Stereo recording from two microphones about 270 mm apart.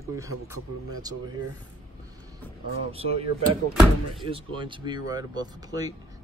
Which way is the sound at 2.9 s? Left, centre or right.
Right.